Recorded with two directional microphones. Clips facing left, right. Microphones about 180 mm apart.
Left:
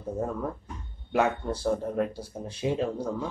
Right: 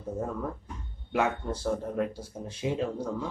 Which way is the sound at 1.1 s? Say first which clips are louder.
Left 3 dB; 35° left (ahead or behind).